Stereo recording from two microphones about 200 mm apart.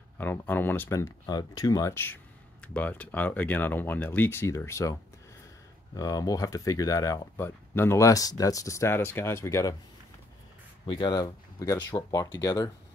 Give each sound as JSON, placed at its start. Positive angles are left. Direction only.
{"t": 0.2, "sound": "speech", "side_deg": 10}
{"t": 5.9, "sound": "speech", "side_deg": 15}
{"t": 10.9, "sound": "speech", "side_deg": 20}